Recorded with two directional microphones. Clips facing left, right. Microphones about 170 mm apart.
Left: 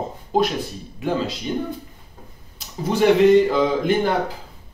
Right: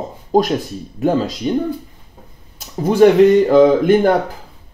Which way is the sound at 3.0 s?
45° right (ahead or behind).